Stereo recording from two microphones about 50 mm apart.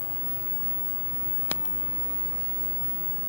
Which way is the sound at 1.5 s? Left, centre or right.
Left.